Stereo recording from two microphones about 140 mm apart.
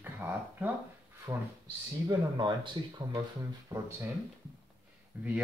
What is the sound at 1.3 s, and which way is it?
Speech, 25° right (ahead or behind).